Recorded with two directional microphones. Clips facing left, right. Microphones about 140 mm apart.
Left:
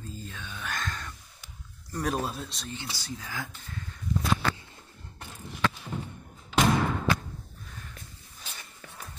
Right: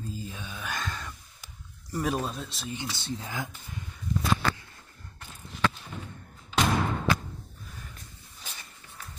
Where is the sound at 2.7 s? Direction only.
20° right (ahead or behind).